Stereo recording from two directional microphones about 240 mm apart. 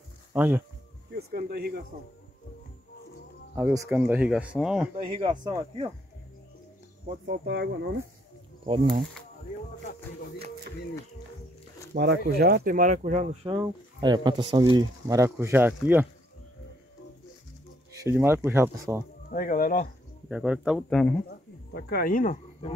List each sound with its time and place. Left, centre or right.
0.3 s speech: centre
1.1 s speech: right
3.5 s speech: centre
4.9 s speech: right
7.4 s speech: right
11.9 s speech: right; by 16.1 s centre
18.0 s speech: centre
19.3 s speech: left
20.2 s speech: centre
21.3 s speech: left